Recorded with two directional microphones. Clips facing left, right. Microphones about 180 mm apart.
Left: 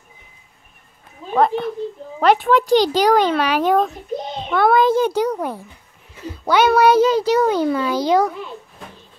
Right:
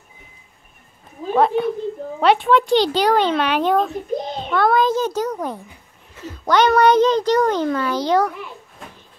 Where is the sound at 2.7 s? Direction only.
45° left (ahead or behind).